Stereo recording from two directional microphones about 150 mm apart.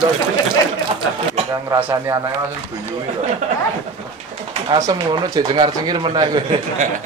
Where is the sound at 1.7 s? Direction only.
20° right (ahead or behind).